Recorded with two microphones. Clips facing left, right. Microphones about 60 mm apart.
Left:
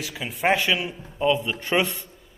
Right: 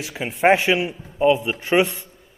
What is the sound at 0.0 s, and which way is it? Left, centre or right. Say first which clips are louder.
A man's voice: right 6 dB; right.